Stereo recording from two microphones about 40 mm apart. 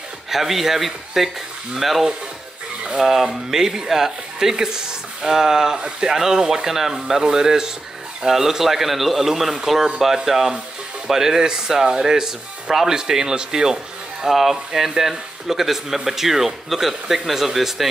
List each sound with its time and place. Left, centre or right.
0.3 s speech: centre
14.2 s speech: centre